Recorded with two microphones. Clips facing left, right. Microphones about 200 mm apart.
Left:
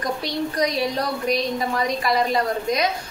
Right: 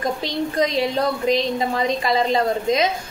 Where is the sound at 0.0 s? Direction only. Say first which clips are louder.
Right 2 dB; 25° right (ahead or behind).